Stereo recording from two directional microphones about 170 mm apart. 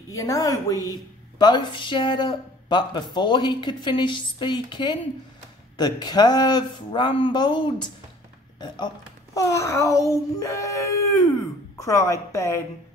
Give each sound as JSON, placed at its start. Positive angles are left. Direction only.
{"t": 0.1, "sound": "a child's voice", "side_deg": 20}